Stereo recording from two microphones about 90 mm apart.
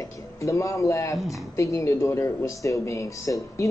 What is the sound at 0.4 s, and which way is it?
Speech, 35° left (ahead or behind).